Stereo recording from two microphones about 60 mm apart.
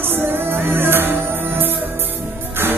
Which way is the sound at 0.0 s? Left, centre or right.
Right.